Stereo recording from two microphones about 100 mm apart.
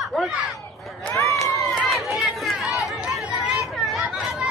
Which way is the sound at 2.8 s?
Centre (ahead or behind).